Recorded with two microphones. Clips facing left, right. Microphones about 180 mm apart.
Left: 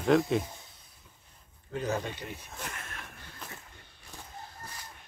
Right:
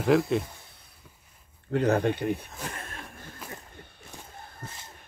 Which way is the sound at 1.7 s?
65° right (ahead or behind).